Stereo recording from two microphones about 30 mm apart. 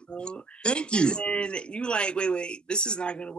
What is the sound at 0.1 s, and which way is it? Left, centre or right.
Speech, left.